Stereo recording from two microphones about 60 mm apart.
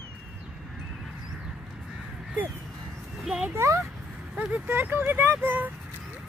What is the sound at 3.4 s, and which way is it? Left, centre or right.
Speech, right.